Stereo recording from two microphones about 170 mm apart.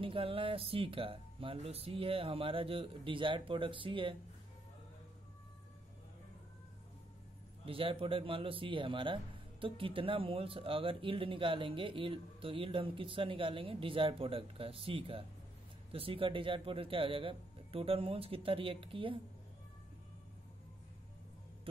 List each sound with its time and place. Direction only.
0.0 s a man's voice: 35° right (ahead or behind)
7.6 s a man's voice: 35° right (ahead or behind)